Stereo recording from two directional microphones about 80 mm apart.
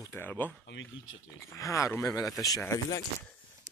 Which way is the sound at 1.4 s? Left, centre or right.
Left.